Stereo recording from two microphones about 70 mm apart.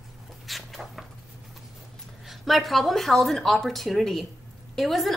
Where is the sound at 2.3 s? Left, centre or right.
Centre.